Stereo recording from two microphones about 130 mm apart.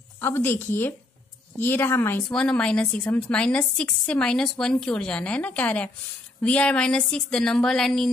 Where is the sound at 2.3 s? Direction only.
10° left (ahead or behind).